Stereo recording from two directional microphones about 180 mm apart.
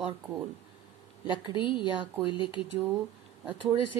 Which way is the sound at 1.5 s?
25° left (ahead or behind).